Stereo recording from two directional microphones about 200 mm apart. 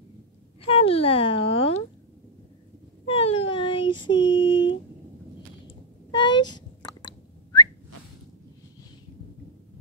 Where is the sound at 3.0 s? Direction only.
30° left (ahead or behind).